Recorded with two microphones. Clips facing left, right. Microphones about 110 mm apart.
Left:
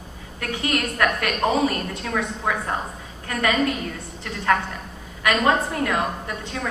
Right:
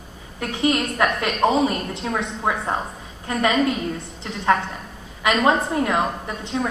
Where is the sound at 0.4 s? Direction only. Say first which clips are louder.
Right 4 dB; 20° right (ahead or behind).